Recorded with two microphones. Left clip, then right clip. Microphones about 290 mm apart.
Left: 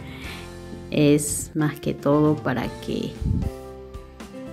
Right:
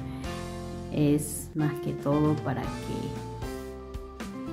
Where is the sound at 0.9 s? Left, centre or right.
Centre.